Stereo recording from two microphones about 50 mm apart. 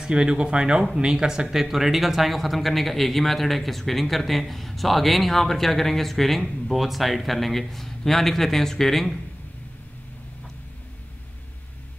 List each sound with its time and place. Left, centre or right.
0.0 s speech: centre